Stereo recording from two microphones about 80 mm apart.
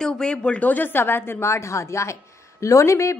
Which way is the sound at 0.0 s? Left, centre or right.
Centre.